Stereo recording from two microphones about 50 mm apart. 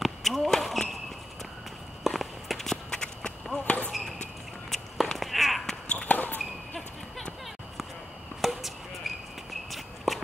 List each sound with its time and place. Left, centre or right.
0.0 s basketball bounce: centre
2.0 s walk: centre
3.5 s basketball bounce: left
4.6 s a sound: centre
5.9 s basketball bounce: left
8.4 s walk: centre